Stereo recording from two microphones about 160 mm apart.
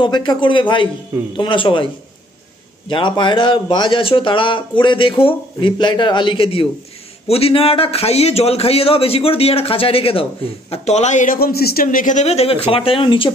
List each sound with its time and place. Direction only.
0.0 s speech: 30° left (ahead or behind)
2.9 s a man's voice: 30° left (ahead or behind)